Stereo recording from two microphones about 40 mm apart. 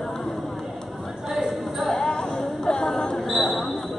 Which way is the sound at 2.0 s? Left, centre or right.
Centre.